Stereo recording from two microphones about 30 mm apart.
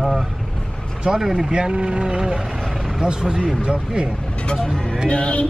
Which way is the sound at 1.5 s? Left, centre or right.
Right.